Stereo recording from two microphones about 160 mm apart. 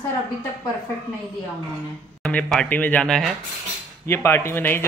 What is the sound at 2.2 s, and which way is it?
Speech, 5° left (ahead or behind).